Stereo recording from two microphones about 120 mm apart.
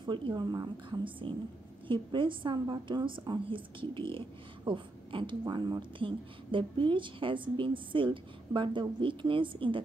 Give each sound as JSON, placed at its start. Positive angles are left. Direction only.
{"t": 0.0, "sound": "a woman's voice", "side_deg": -40}